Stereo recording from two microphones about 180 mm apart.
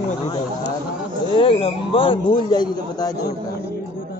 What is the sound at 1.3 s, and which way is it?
A man's voice, 30° left (ahead or behind).